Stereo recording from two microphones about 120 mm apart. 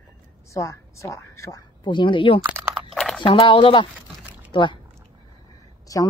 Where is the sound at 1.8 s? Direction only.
40° left (ahead or behind).